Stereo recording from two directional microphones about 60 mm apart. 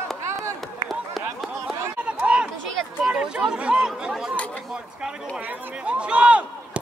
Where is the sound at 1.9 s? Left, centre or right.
Centre.